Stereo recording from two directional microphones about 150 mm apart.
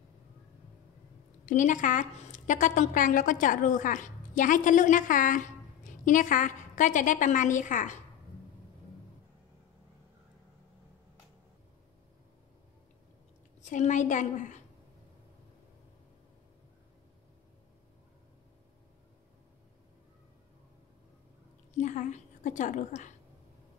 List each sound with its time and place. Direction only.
1.4 s a woman's voice: 55° left (ahead or behind)
13.6 s a woman's voice: 55° left (ahead or behind)
21.7 s a woman's voice: 55° left (ahead or behind)